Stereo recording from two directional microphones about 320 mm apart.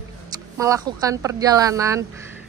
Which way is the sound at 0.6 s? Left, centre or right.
Centre.